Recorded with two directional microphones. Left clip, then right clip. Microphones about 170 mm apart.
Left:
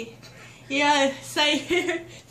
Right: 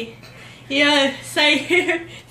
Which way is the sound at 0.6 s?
20° left (ahead or behind).